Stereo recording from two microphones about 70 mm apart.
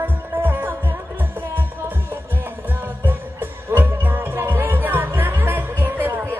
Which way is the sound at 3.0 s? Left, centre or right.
Right.